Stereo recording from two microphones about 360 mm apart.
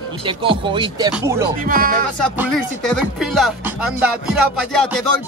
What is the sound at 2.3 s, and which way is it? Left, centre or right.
Speech, centre.